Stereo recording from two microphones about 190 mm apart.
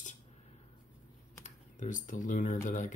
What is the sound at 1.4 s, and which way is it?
Speech, 40° left (ahead or behind).